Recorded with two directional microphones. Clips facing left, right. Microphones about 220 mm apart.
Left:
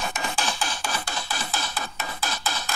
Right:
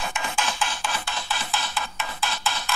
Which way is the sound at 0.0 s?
40° left (ahead or behind).